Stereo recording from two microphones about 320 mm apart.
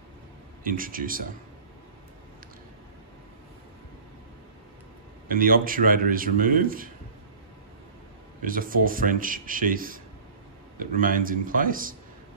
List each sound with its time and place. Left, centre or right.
0.7 s a man's voice: right
5.3 s a man's voice: right
8.5 s a man's voice: right